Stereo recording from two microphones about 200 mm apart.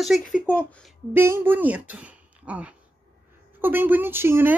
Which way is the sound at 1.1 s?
10° right (ahead or behind).